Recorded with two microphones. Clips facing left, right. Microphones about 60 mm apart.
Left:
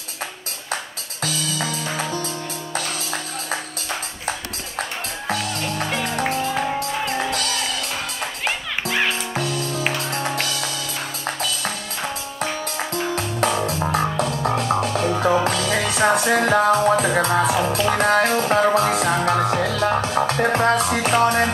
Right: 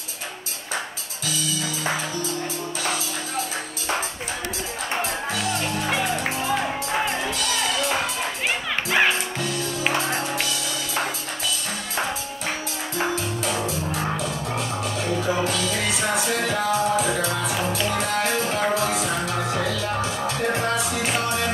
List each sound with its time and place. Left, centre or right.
13.1 s music: left